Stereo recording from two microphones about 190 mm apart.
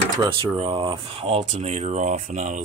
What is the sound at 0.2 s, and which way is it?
Speech, 25° right (ahead or behind).